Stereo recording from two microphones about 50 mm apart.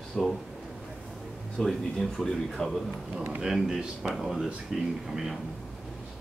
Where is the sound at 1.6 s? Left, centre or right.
Centre.